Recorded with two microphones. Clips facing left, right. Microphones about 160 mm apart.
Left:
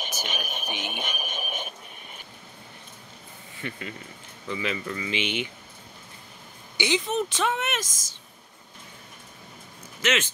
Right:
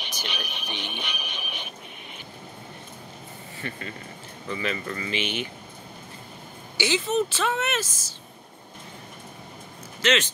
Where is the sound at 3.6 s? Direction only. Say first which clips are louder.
Even; 15° left (ahead or behind).